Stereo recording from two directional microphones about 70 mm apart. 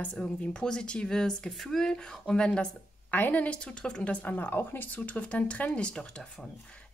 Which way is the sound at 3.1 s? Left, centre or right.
Left.